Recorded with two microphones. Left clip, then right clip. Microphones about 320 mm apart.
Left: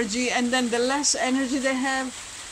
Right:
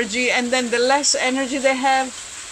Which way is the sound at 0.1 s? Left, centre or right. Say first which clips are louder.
Right 5 dB; centre.